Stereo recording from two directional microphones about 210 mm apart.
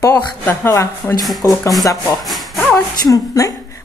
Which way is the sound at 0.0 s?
10° left (ahead or behind).